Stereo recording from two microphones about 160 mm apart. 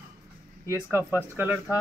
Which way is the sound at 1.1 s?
15° right (ahead or behind).